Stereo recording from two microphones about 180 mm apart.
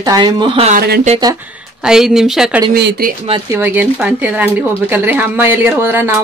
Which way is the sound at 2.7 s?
55° right (ahead or behind).